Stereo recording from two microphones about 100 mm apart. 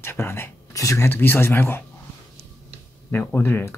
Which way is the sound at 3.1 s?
20° left (ahead or behind).